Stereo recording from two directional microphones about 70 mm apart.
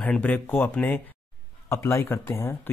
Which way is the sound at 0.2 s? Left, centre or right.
Left.